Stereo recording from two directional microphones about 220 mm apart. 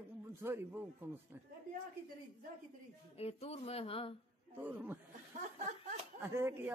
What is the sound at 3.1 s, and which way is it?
Speech, 30° left (ahead or behind).